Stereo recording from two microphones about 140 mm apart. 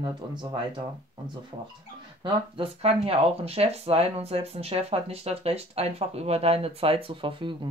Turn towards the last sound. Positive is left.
turn(degrees=-40)  # may be behind; listen again after turning